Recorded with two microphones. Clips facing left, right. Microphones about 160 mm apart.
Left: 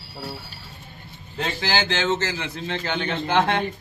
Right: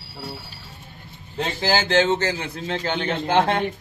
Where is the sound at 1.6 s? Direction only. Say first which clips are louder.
Right 5 dB; 45° right (ahead or behind).